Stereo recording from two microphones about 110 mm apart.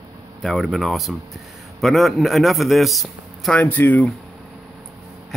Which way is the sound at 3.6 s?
15° left (ahead or behind).